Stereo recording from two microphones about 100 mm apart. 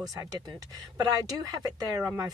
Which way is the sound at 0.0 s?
35° right (ahead or behind).